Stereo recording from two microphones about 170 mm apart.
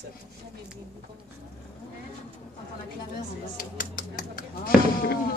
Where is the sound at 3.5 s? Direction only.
55° left (ahead or behind).